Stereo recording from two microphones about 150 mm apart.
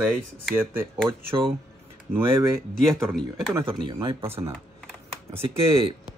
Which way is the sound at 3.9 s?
35° right (ahead or behind).